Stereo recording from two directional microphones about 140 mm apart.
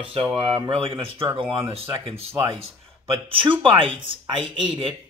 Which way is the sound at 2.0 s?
45° right (ahead or behind).